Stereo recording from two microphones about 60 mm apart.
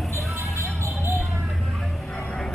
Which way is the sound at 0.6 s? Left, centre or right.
Right.